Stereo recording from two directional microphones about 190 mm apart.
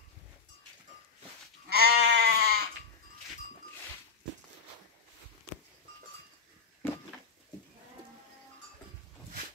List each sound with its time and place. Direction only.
1.7 s goat: 60° right (ahead or behind)